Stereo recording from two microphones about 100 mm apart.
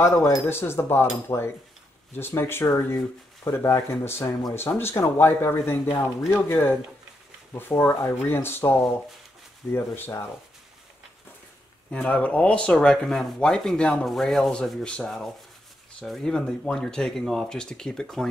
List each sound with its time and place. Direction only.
0.0 s speech: 30° left (ahead or behind)
11.9 s speech: 15° left (ahead or behind)